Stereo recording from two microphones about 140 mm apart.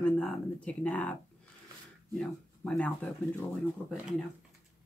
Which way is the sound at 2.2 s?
5° left (ahead or behind).